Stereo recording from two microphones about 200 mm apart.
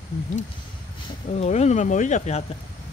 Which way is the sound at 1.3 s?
35° left (ahead or behind).